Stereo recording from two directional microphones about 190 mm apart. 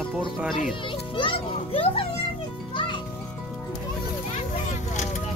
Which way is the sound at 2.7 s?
25° left (ahead or behind).